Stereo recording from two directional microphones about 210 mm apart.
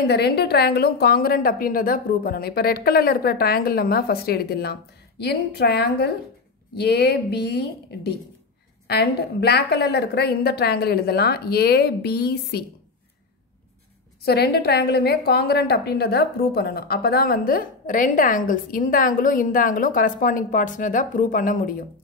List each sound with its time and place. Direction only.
0.1 s a woman's voice: 50° left (ahead or behind)
14.2 s a woman's voice: 50° left (ahead or behind)